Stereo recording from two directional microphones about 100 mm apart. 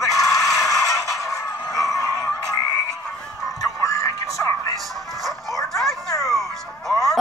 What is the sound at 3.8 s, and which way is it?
Music, 30° left (ahead or behind).